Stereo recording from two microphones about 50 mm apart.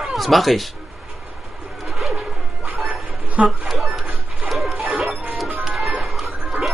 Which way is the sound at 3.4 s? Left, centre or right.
Centre.